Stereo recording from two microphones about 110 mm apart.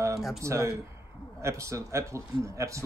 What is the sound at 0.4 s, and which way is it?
Speech, 25° right (ahead or behind).